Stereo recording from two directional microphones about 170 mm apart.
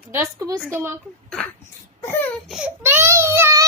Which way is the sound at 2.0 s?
15° left (ahead or behind).